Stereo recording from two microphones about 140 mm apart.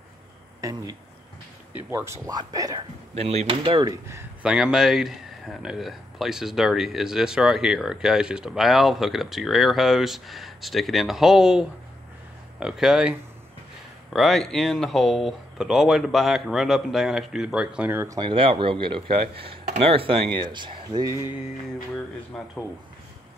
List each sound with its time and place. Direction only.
0.6 s a sound: 25° right (ahead or behind)
1.9 s speech: 20° right (ahead or behind)
3.2 s speech: 50° right (ahead or behind)
4.4 s speech: 5° right (ahead or behind)
14.1 s speech: centre (ahead or behind); by 18.1 s 15° right (ahead or behind)
18.1 s speech: 35° right (ahead or behind)
22.3 s speech: 5° left (ahead or behind)